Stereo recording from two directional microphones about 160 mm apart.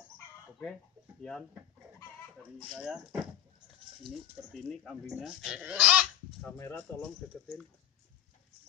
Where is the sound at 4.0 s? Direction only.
Centre (ahead or behind).